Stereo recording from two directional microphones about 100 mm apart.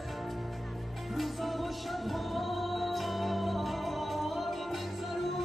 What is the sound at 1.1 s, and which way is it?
Music, centre (ahead or behind).